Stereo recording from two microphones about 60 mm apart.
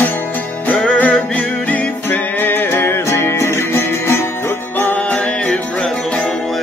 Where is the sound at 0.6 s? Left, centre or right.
Left.